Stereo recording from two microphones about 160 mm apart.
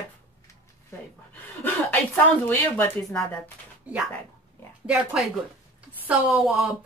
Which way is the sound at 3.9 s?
10° right (ahead or behind).